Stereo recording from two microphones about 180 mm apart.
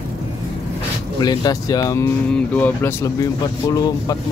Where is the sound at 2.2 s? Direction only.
5° left (ahead or behind).